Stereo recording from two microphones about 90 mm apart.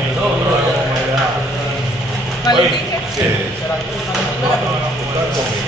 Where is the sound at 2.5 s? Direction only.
50° left (ahead or behind).